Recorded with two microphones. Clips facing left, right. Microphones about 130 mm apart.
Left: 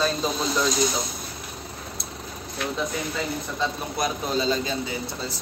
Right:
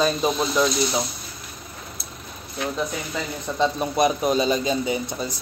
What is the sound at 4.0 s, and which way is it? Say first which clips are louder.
Speech: right 6 dB; 20° right (ahead or behind).